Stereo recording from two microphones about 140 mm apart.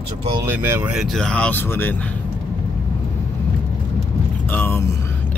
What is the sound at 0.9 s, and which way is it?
Speech, 5° left (ahead or behind).